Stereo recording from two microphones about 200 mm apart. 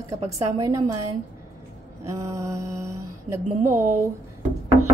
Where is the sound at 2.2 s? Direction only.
15° right (ahead or behind).